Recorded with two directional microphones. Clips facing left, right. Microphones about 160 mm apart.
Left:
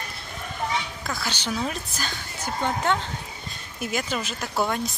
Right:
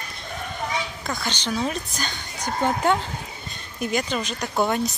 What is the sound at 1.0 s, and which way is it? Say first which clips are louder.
Speech: right 2 dB; 5° left (ahead or behind).